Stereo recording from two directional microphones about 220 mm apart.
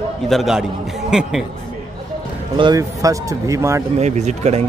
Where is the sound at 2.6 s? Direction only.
15° right (ahead or behind).